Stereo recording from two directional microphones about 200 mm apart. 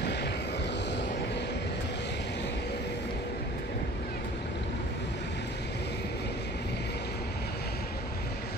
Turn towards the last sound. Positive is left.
turn(degrees=55)  # may be behind; listen again after turning